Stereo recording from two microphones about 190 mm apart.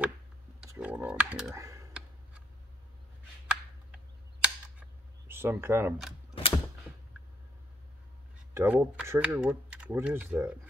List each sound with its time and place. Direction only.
0.7 s typing: 10° right (ahead or behind)
1.5 s speech: 15° right (ahead or behind)
3.4 s tick: 5° right (ahead or behind)
5.3 s speech: 10° right (ahead or behind)
8.5 s speech: 10° right (ahead or behind)